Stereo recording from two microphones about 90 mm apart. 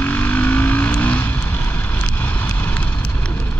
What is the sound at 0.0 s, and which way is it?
Vehicle, 20° left (ahead or behind).